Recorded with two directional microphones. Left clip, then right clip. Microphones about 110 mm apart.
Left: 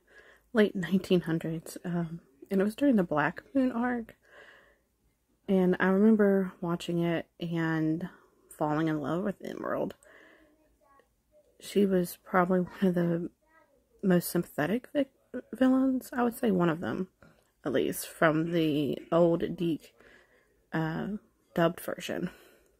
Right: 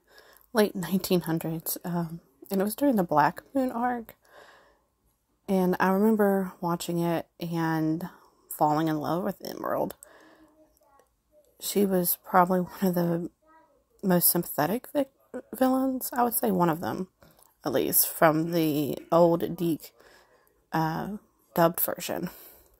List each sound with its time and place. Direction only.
0.1 s a woman's voice: 40° left (ahead or behind)
3.7 s a woman's voice: 30° left (ahead or behind)
4.3 s a sound: 40° left (ahead or behind)
5.4 s a woman's voice: 35° left (ahead or behind)
8.0 s a sound: 40° left (ahead or behind)
9.0 s a woman's voice: 35° left (ahead or behind)
9.8 s computer keyboard: 40° left (ahead or behind)
11.5 s a woman's voice: 45° left (ahead or behind)
16.8 s speech: 50° left (ahead or behind)
17.6 s a woman's voice: 35° left (ahead or behind)
19.7 s a sound: 40° left (ahead or behind)
20.7 s speech: 30° left (ahead or behind)